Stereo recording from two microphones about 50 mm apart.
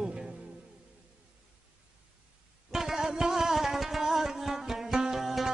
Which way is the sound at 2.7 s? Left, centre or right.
Centre.